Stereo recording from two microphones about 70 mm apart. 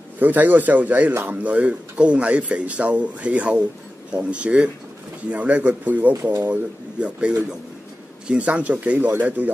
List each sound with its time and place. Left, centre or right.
0.2 s speech: right